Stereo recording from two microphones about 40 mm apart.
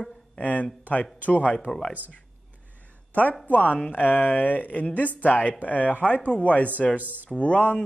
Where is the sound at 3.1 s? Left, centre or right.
Left.